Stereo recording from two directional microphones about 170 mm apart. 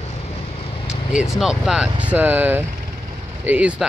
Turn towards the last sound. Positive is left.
turn(degrees=-10)  # may be behind; listen again after turning